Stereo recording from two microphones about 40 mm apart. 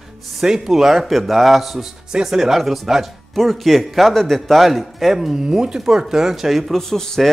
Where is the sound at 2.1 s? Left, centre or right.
Centre.